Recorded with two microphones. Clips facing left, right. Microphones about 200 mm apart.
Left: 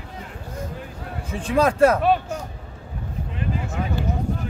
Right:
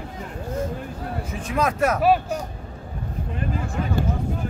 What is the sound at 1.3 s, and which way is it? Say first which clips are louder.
Speech: left 5 dB; 30° left (ahead or behind).